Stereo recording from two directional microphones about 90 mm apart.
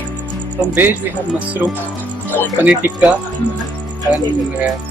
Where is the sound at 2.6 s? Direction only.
15° right (ahead or behind).